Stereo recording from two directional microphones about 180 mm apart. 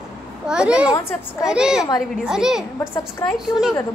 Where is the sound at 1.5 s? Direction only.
5° right (ahead or behind).